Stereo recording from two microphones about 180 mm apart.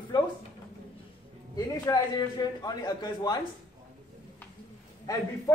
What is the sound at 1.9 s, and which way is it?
A man's voice, 20° left (ahead or behind).